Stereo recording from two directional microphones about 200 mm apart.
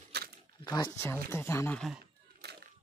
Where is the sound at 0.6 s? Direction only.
20° left (ahead or behind); by 2.0 s 5° left (ahead or behind).